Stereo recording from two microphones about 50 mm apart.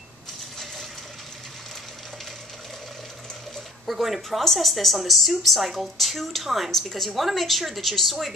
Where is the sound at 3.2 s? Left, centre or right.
Centre.